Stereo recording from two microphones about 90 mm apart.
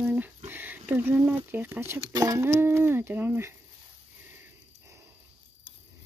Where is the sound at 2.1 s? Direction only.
40° right (ahead or behind).